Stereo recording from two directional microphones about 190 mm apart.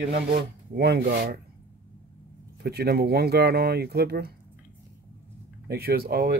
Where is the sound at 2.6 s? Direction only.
55° right (ahead or behind).